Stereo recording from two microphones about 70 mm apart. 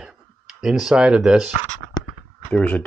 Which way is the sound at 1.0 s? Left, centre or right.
Centre.